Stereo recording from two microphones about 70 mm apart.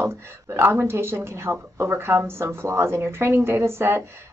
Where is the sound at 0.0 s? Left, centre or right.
Right.